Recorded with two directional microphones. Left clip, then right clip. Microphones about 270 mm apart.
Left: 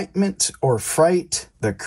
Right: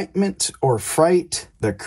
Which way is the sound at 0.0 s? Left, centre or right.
Left.